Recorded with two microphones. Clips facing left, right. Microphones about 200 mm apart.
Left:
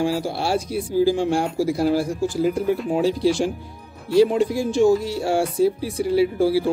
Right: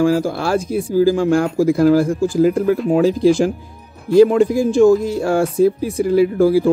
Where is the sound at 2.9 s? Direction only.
90° right.